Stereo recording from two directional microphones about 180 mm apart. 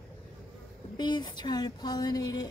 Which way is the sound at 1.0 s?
25° left (ahead or behind).